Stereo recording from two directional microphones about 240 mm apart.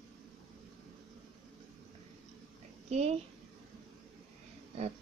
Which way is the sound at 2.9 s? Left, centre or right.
Right.